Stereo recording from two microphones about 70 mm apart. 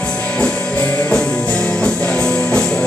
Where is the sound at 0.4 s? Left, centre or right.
Left.